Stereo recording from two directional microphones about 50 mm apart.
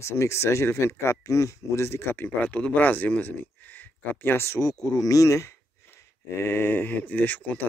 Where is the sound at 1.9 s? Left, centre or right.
Left.